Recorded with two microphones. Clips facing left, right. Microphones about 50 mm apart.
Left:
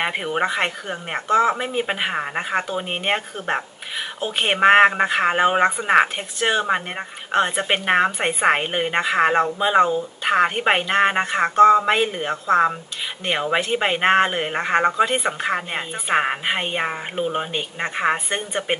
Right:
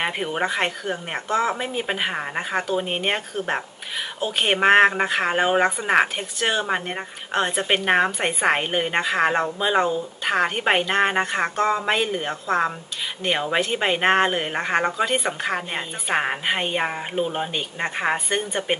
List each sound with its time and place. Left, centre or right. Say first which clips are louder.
0.0 s speech: left 2 dB; centre
3.3 s speech: left 1 dB; centre